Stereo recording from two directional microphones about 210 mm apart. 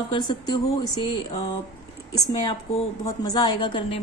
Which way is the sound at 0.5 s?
25° left (ahead or behind).